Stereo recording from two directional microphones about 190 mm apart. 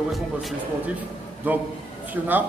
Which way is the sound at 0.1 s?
Centre (ahead or behind).